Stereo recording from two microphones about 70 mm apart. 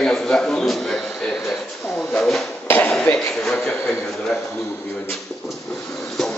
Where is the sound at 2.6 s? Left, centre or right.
Left.